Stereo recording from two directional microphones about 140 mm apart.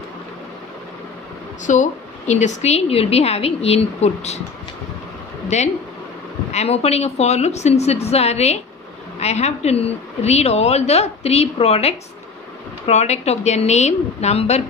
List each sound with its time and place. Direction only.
1.7 s a woman's voice: 60° left (ahead or behind)
6.5 s a woman's voice: 50° left (ahead or behind)